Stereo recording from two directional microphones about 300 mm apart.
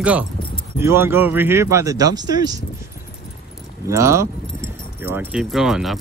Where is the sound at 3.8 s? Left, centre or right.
Centre.